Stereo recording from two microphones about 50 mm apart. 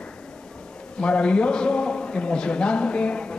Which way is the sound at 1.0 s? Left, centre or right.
Left.